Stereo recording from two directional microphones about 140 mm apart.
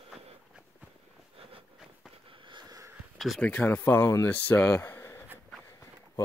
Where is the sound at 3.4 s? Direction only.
10° left (ahead or behind).